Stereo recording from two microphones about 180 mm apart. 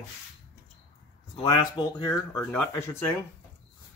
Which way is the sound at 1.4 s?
25° left (ahead or behind).